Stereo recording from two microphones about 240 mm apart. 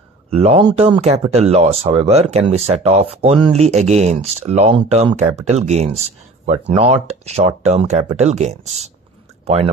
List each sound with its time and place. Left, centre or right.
0.3 s speech: right